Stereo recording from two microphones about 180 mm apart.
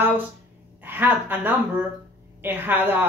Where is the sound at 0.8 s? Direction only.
10° right (ahead or behind).